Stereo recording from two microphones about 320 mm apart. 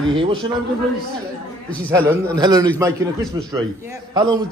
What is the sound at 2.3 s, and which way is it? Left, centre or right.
A man's voice, centre.